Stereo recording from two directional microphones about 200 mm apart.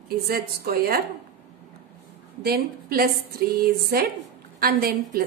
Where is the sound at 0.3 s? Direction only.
45° right (ahead or behind).